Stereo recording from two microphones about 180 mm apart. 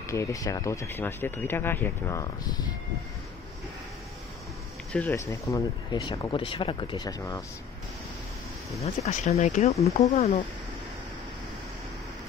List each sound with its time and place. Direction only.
0.0 s speech: 15° left (ahead or behind)
4.9 s speech: 10° left (ahead or behind)
9.0 s speech: 40° left (ahead or behind)